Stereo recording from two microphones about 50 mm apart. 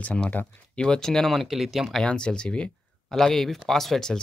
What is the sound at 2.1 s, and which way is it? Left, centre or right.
Speech, centre.